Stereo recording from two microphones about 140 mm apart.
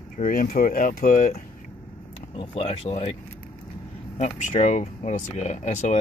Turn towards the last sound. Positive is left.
turn(degrees=55)  # may be behind; listen again after turning